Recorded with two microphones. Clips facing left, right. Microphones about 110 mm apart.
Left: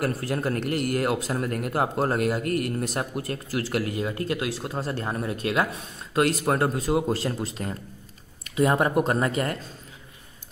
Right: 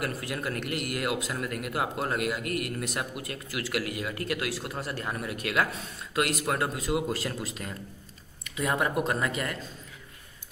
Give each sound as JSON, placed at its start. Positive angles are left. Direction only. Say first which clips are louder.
{"t": 0.0, "sound": "speech", "louder": "left 6 dB", "side_deg": 35}